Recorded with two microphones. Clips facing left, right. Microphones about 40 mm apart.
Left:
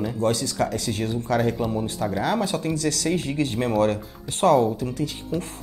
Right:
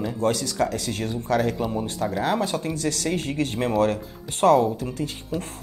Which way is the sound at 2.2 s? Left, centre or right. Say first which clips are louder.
Even; right.